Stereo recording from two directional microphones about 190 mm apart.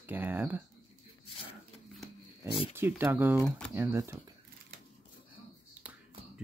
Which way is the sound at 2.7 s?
10° right (ahead or behind).